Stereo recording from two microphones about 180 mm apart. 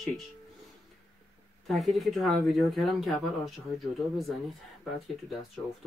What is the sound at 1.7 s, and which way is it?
Speech, centre (ahead or behind).